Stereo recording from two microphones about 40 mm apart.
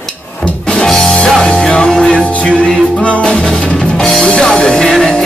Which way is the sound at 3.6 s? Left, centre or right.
Left.